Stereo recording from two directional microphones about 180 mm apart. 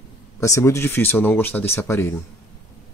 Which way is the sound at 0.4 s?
15° left (ahead or behind).